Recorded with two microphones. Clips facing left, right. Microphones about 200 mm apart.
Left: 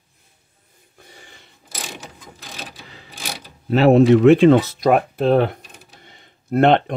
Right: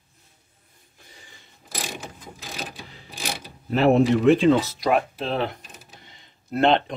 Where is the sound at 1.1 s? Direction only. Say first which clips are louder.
Left 5 dB; 70° left (ahead or behind).